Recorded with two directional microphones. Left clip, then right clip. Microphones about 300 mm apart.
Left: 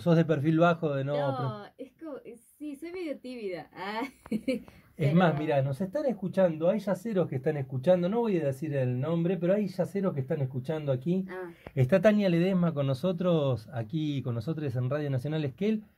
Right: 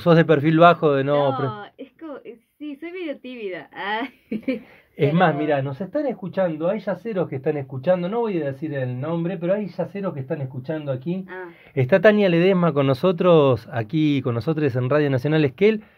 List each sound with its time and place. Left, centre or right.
0.0 s speech: right
1.3 s speech: centre
2.8 s a woman's voice: centre
4.9 s speech: right; by 11.1 s centre
11.7 s speech: centre